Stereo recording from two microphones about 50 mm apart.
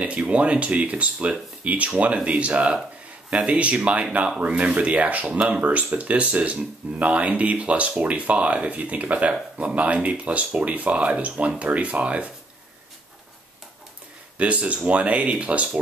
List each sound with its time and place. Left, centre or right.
0.0 s speech: right
14.4 s speech: right